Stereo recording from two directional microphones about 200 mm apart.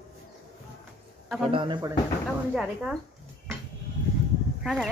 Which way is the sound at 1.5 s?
25° right (ahead or behind).